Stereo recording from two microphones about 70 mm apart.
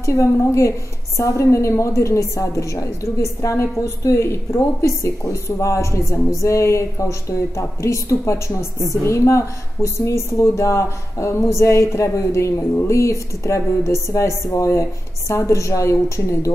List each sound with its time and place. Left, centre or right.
0.0 s a woman's voice: left